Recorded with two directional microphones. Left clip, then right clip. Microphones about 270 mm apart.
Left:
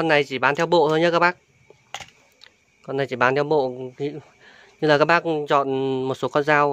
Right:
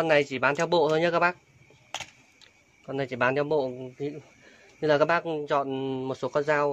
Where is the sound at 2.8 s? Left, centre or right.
Left.